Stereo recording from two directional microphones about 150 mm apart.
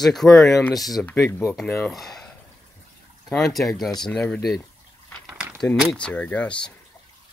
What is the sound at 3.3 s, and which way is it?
Speech, centre (ahead or behind).